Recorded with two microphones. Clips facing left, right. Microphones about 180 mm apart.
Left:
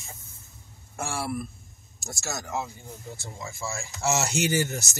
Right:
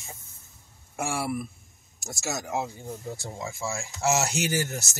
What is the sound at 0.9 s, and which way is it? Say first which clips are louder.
Speech: right 2 dB; 15° right (ahead or behind).